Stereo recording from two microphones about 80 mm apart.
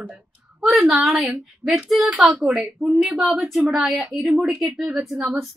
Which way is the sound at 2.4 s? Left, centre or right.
Centre.